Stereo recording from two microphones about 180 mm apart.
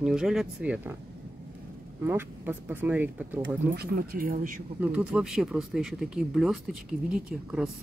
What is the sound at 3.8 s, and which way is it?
Speech, 55° right (ahead or behind).